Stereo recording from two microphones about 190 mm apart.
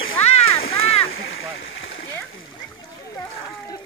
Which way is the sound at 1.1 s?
75° left (ahead or behind).